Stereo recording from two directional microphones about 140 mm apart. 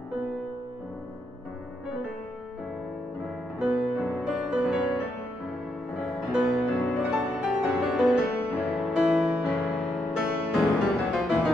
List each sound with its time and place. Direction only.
3.5 s music: 5° right (ahead or behind)